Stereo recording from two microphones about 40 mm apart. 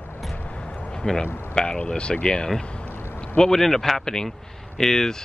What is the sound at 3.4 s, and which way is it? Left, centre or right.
Speech, centre.